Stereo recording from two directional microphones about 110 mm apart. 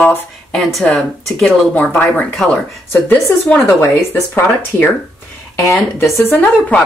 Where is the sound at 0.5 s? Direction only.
5° left (ahead or behind).